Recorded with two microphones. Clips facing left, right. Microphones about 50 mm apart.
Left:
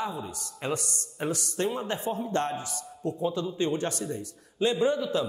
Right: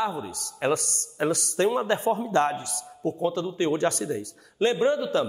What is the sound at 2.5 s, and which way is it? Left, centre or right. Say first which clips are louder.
Speech: right 1 dB; left.